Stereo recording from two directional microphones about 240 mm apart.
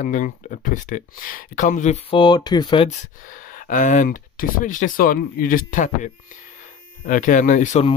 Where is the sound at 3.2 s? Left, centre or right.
Left.